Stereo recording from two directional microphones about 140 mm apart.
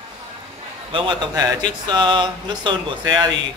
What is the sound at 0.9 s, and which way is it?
Speech, 35° right (ahead or behind).